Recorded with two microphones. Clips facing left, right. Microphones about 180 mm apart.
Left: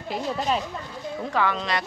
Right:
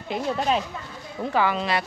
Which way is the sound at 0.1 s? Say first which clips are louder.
Right 2 dB; centre (ahead or behind).